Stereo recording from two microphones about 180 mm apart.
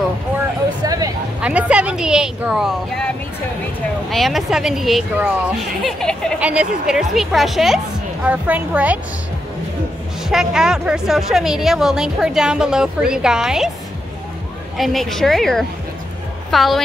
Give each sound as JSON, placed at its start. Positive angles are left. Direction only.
{"t": 0.8, "sound": "a sound", "side_deg": -20}
{"t": 1.4, "sound": "a woman's voice", "side_deg": -5}
{"t": 4.1, "sound": "speech", "side_deg": 0}
{"t": 5.9, "sound": "a woman's voice", "side_deg": 5}
{"t": 10.3, "sound": "speech", "side_deg": -5}
{"t": 14.8, "sound": "a woman's voice", "side_deg": 0}